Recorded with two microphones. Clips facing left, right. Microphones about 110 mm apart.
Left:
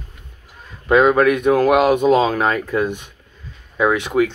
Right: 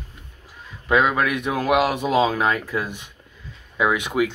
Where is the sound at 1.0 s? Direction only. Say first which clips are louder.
Left 7 dB; 45° left (ahead or behind).